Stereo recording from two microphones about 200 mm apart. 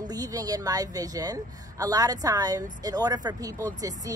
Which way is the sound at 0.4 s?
20° right (ahead or behind).